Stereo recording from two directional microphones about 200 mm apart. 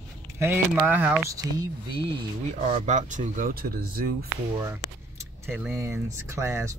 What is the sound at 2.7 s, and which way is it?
Speech, 35° right (ahead or behind).